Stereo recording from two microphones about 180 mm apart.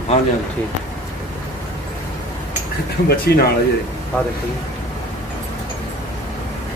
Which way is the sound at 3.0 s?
60° left (ahead or behind).